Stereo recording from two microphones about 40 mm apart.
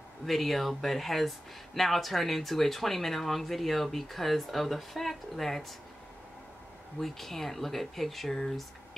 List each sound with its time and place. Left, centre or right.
0.2 s speech: centre
7.0 s speech: centre